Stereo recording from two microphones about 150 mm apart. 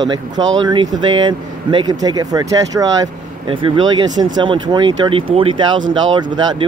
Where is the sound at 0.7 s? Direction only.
30° right (ahead or behind).